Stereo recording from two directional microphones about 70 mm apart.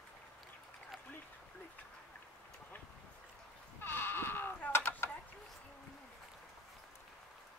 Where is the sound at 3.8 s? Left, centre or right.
Left.